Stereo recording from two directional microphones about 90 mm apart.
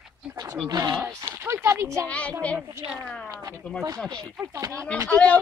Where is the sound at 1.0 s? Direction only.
25° right (ahead or behind).